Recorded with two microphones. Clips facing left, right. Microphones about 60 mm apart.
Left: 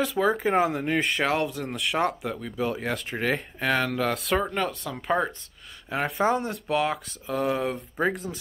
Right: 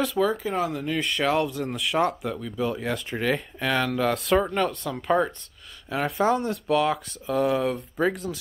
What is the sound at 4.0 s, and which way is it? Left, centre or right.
Speech, centre.